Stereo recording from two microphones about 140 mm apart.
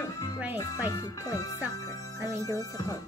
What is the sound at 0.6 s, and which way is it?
Speech, 25° left (ahead or behind).